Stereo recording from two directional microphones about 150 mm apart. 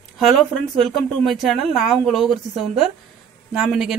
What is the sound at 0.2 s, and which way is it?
Speech, centre (ahead or behind).